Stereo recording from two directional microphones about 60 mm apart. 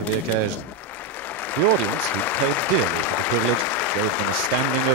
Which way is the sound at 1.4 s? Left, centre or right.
Left.